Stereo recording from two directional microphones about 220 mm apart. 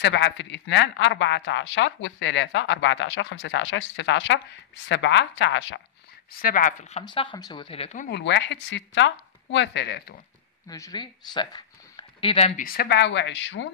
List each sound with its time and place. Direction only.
0.0 s speech: 50° left (ahead or behind)
6.4 s speech: 35° left (ahead or behind)
8.1 s speech: 50° left (ahead or behind)
10.7 s speech: 20° left (ahead or behind)
12.6 s speech: 45° left (ahead or behind)